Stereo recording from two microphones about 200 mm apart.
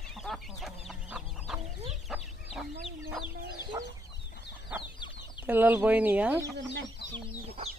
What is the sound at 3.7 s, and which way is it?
Chicken, 15° right (ahead or behind).